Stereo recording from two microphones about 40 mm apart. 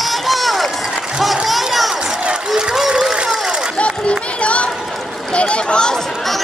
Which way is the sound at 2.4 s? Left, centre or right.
Centre.